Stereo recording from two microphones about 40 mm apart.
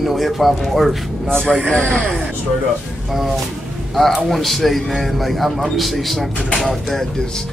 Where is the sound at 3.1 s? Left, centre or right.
Centre.